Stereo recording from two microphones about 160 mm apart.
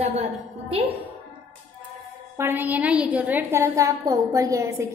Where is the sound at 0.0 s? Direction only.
45° right (ahead or behind).